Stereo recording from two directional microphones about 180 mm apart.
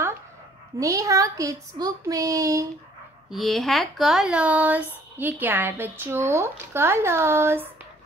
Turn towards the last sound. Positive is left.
turn(degrees=-15)  # may be behind; listen again after turning